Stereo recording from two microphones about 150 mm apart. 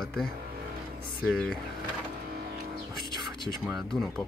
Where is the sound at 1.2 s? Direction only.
Centre (ahead or behind).